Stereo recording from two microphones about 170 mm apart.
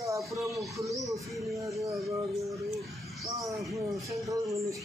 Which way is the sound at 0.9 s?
Centre (ahead or behind).